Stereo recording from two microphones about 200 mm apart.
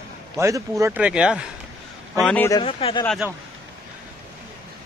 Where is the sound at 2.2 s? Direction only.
10° left (ahead or behind).